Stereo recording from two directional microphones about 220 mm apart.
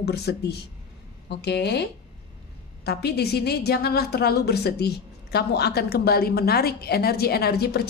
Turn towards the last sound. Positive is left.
turn(degrees=45)  # may be behind; listen again after turning